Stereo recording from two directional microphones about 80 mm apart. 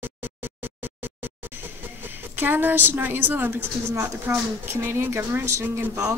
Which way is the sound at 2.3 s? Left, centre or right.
Right.